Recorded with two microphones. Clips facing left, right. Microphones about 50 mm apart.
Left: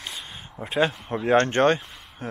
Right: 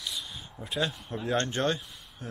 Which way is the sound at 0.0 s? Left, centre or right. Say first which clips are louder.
Left 1 dB; left.